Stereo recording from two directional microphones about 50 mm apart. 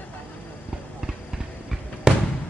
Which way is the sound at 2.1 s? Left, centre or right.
Centre.